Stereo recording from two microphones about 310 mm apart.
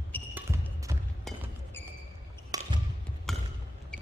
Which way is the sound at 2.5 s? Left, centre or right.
Centre.